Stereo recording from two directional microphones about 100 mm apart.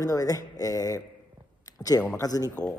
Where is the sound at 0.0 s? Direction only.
35° left (ahead or behind).